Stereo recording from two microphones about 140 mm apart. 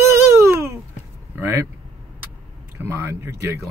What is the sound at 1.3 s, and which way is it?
Vehicle, 15° right (ahead or behind).